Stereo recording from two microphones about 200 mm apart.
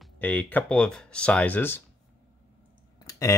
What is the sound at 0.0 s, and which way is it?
Speech, 5° left (ahead or behind).